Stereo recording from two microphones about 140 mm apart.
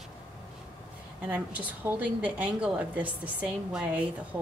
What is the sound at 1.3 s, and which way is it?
A woman's voice, 10° right (ahead or behind).